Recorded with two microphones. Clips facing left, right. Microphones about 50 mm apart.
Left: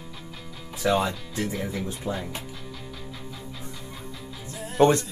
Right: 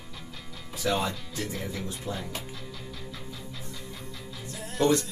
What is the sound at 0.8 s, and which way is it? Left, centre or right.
Speech, left.